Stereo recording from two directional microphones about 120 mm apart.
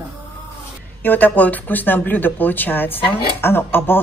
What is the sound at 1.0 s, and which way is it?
Speech, 15° left (ahead or behind).